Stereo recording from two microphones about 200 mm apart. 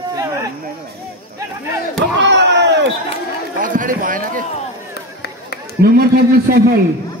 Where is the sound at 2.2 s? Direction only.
60° right (ahead or behind).